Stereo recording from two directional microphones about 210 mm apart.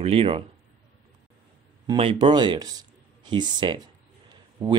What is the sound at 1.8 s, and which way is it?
Speech, 25° right (ahead or behind).